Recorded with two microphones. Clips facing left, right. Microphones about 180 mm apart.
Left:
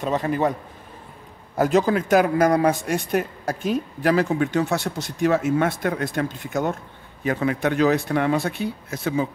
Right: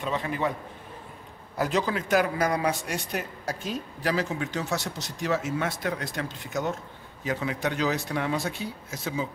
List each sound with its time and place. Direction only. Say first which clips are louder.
0.0 s a man's voice: left 7 dB; 45° left (ahead or behind)
1.6 s speech: left 8 dB; 50° left (ahead or behind)